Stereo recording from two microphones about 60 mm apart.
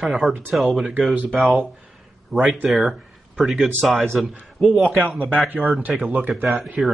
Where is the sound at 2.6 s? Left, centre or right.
Centre.